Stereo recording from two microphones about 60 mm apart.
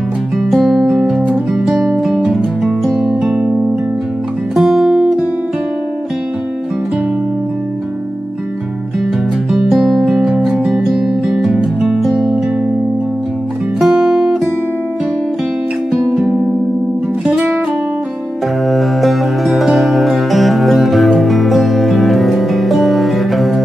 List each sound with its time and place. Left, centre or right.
0.5 s music: centre
0.7 s music: centre
1.6 s music: centre
4.6 s music: centre
9.8 s music: centre
13.7 s music: centre
17.3 s music: centre
18.7 s music: centre